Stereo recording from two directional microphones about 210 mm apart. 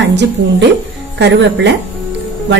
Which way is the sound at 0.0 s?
55° right (ahead or behind).